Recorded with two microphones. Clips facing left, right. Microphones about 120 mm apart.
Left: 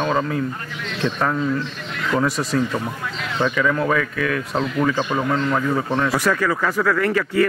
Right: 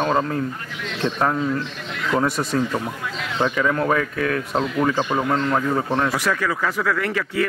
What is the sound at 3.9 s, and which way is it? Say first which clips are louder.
Speech: even; 35° right (ahead or behind).